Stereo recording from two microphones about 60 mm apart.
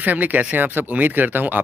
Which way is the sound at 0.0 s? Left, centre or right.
Right.